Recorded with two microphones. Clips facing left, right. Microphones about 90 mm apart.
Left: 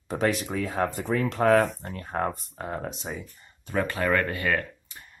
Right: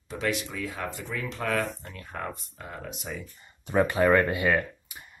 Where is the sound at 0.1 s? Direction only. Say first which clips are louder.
Left 4 dB; 40° left (ahead or behind).